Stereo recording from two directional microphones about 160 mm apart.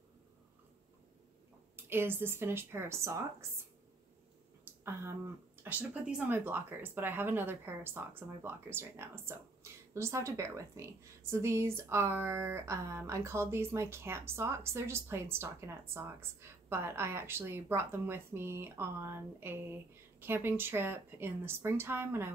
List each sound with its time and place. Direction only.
1.8 s speech: 15° right (ahead or behind)
4.6 s speech: 15° right (ahead or behind)